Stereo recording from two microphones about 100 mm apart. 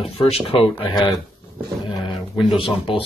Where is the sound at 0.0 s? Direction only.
70° left (ahead or behind).